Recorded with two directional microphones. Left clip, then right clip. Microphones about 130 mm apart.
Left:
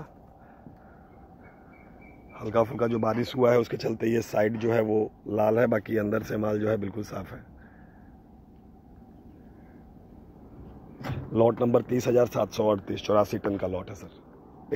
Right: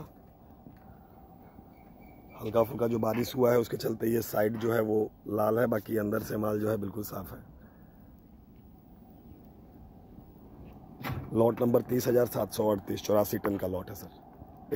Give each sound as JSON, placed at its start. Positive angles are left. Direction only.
{"t": 2.5, "sound": "speech", "side_deg": -10}
{"t": 11.3, "sound": "speech", "side_deg": -20}